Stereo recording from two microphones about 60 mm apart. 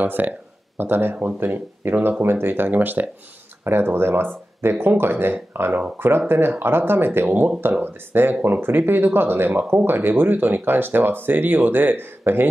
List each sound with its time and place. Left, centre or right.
0.0 s speech: right